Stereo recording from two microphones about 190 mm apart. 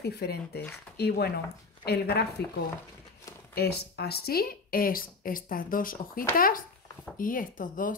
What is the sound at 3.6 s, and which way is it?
Speech, 55° left (ahead or behind).